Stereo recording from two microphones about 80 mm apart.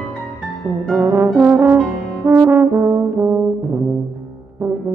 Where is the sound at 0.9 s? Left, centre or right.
Right.